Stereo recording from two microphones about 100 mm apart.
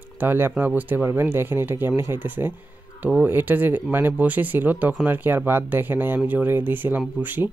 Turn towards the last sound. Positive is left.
turn(degrees=-20)  # may be behind; listen again after turning